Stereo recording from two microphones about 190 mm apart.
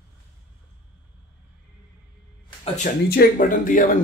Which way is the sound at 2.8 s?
50° left (ahead or behind).